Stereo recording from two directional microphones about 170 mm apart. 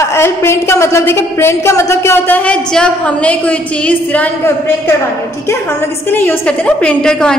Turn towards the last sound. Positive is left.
turn(degrees=5)  # may be behind; listen again after turning